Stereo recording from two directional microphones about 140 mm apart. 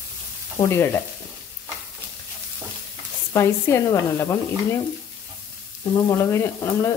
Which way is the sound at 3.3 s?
20° left (ahead or behind).